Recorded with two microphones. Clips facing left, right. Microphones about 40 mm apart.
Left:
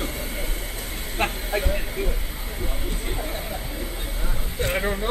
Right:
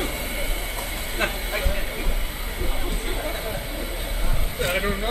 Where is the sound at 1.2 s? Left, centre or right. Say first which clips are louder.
Left 1 dB; centre.